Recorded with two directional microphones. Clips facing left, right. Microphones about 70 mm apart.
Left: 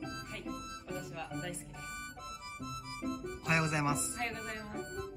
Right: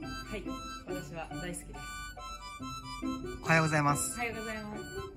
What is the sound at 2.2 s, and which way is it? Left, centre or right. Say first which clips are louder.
Music: right 2 dB; right.